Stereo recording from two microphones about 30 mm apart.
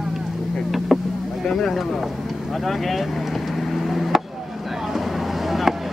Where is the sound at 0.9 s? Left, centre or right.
Centre.